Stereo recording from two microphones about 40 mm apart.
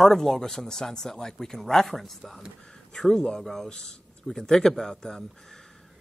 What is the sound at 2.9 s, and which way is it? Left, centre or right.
Speech, centre.